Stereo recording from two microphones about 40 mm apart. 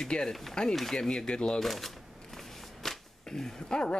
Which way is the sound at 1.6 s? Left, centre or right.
Centre.